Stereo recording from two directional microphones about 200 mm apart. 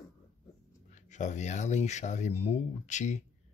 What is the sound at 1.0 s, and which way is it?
Speech, 35° left (ahead or behind).